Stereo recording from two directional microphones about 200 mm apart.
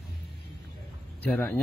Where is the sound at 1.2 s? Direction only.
10° left (ahead or behind).